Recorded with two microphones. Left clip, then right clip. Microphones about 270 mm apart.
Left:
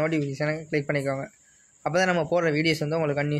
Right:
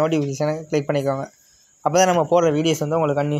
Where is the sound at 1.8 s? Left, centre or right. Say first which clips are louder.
Right 7 dB; right.